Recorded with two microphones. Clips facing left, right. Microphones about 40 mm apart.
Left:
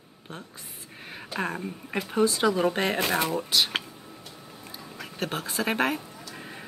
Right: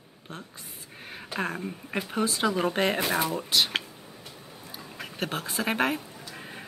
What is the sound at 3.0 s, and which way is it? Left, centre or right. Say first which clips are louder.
Speech: left 1 dB; left.